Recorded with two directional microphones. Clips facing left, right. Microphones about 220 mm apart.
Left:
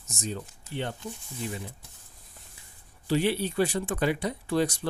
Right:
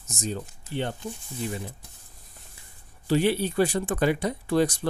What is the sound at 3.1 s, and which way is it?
Speech, 45° right (ahead or behind).